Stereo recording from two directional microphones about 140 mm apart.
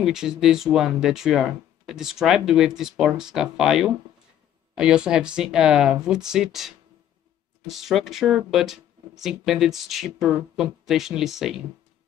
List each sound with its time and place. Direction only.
0.0 s speech: 5° right (ahead or behind)